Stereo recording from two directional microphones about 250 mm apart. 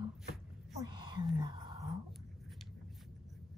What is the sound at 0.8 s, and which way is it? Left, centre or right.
Speech, centre.